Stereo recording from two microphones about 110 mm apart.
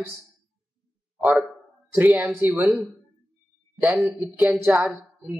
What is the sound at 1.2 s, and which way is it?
Speech, 10° right (ahead or behind).